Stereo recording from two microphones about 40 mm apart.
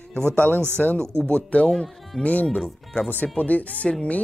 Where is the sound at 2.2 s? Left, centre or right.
Left.